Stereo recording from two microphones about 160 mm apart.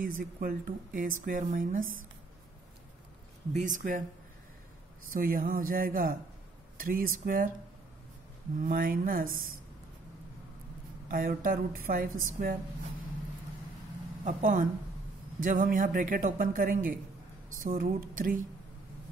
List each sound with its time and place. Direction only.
0.0 s speech: 60° right (ahead or behind)
3.5 s speech: 55° right (ahead or behind)
5.1 s speech: 60° right (ahead or behind)
8.6 s speech: 60° right (ahead or behind)
11.1 s speech: 60° right (ahead or behind)
14.2 s speech: 55° right (ahead or behind)